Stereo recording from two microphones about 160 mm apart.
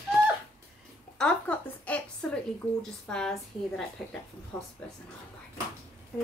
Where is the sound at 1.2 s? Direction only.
10° left (ahead or behind).